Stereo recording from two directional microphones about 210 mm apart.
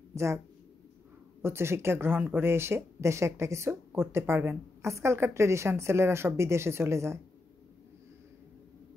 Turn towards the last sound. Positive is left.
turn(degrees=-15)  # may be behind; listen again after turning